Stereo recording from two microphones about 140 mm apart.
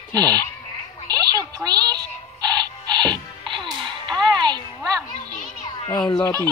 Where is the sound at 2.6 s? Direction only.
30° right (ahead or behind).